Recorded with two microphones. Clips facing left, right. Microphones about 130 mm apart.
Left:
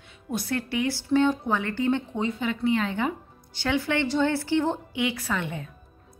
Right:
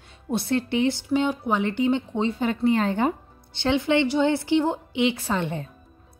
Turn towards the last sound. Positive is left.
turn(degrees=-30)  # may be behind; listen again after turning